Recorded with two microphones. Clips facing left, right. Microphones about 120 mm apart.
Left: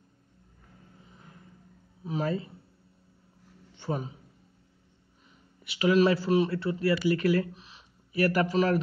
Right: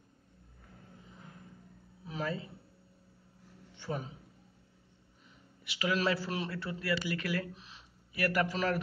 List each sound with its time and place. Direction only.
2.0 s speech: 30° left (ahead or behind)
5.8 s speech: 25° left (ahead or behind)